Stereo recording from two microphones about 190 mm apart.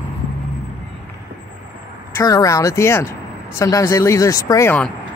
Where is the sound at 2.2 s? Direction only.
15° left (ahead or behind).